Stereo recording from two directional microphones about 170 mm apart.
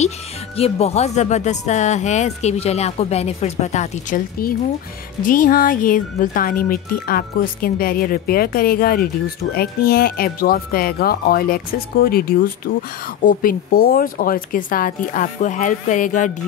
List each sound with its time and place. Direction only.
0.6 s speech: 35° left (ahead or behind)
4.4 s speech: 60° left (ahead or behind)